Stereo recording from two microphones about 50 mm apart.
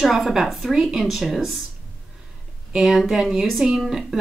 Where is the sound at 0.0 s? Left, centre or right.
Centre.